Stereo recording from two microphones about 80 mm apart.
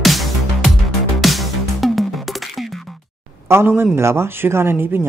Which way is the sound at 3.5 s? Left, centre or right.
Right.